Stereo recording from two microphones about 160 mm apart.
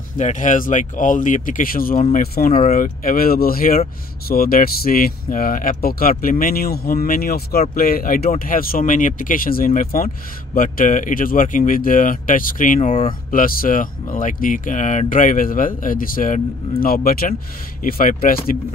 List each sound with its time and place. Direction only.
0.2 s speech: 50° left (ahead or behind)